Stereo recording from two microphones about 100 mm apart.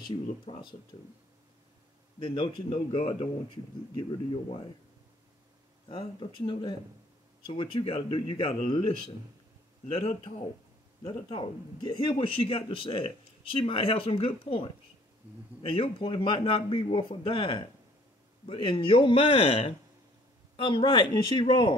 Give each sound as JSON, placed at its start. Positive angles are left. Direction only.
{"t": 0.1, "sound": "speech", "side_deg": 50}
{"t": 2.1, "sound": "speech", "side_deg": 60}
{"t": 5.9, "sound": "speech", "side_deg": 60}
{"t": 9.8, "sound": "speech", "side_deg": 80}
{"t": 11.1, "sound": "speech", "side_deg": 55}
{"t": 19.3, "sound": "speech", "side_deg": 90}
{"t": 20.5, "sound": "speech", "side_deg": 55}